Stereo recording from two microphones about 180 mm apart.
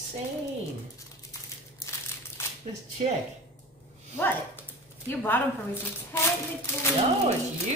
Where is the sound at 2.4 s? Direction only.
15° left (ahead or behind).